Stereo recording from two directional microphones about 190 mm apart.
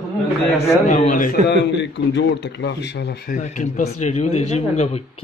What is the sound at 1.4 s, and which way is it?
A man's voice, 65° left (ahead or behind).